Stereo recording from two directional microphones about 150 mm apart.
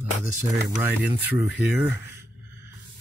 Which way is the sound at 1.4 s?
10° right (ahead or behind).